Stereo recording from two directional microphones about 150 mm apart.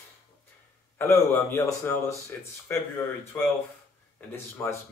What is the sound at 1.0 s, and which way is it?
Speech, 20° left (ahead or behind).